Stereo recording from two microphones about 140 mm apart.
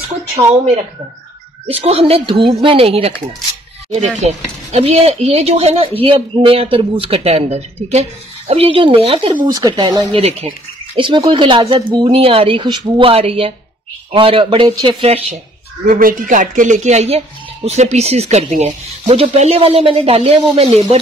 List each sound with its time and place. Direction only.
1.7 s speech: 45° right (ahead or behind)
9.5 s speech: 30° right (ahead or behind)
10.1 s speech: 45° right (ahead or behind)
11.0 s speech: 35° right (ahead or behind)
15.8 s speech: 80° right; by 20.8 s 45° right (ahead or behind)